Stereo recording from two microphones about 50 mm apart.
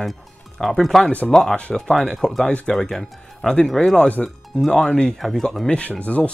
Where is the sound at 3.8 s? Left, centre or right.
Left.